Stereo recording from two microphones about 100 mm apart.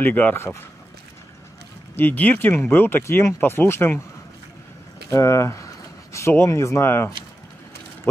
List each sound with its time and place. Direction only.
0.0 s speech: 20° left (ahead or behind)
2.0 s speech: 20° left (ahead or behind)
5.1 s speech: 30° left (ahead or behind)